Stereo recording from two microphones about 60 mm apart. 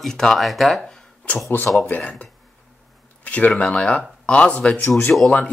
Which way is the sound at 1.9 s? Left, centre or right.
Left.